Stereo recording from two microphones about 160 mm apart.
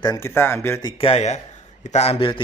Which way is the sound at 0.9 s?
40° left (ahead or behind).